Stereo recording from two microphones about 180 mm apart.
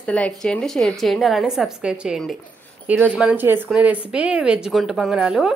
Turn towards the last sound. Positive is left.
turn(degrees=0)  # may be behind; listen again after turning